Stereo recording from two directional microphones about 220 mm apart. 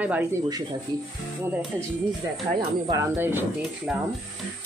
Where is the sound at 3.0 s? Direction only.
10° right (ahead or behind).